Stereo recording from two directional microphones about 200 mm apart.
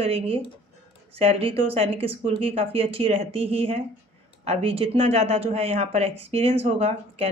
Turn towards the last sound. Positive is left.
turn(degrees=-30)  # may be behind; listen again after turning